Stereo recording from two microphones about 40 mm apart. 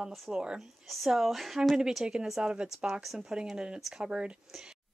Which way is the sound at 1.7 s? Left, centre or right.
Centre.